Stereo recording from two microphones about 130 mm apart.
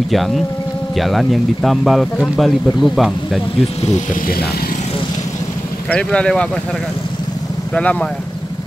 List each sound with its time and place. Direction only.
0.1 s speech: centre (ahead or behind)
3.8 s speech: 65° left (ahead or behind)
5.9 s speech: 10° left (ahead or behind)
7.7 s speech: 10° left (ahead or behind)